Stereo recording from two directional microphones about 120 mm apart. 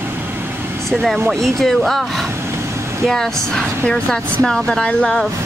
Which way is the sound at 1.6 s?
5° left (ahead or behind).